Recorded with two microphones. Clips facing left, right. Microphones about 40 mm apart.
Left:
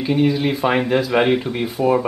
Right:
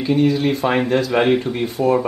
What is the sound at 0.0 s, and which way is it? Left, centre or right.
Speech, centre.